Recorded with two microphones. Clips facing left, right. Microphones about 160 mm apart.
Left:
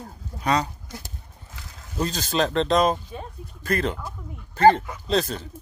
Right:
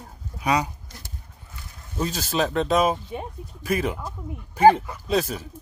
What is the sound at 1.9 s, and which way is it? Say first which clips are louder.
A man's voice: left 1 dB; 5° right (ahead or behind).